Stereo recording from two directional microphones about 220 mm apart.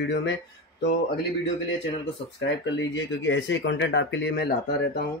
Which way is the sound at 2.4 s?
55° left (ahead or behind).